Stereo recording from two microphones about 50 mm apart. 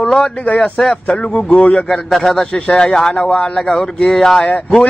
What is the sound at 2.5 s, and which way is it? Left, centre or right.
A man's voice, centre.